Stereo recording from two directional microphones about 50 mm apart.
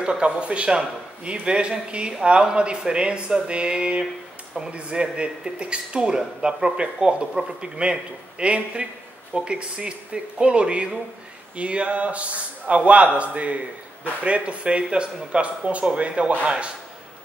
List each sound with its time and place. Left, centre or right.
0.0 s speech: right